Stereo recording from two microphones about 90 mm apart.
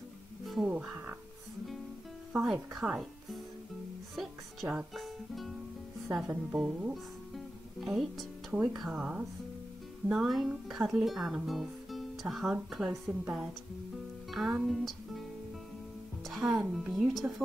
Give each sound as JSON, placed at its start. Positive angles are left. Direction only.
{"t": 0.7, "sound": "speech", "side_deg": -15}
{"t": 2.3, "sound": "speech", "side_deg": -5}
{"t": 4.9, "sound": "music", "side_deg": 0}
{"t": 6.1, "sound": "speech", "side_deg": -5}
{"t": 6.9, "sound": "music", "side_deg": -5}
{"t": 8.7, "sound": "speech", "side_deg": -10}
{"t": 16.3, "sound": "speech", "side_deg": -5}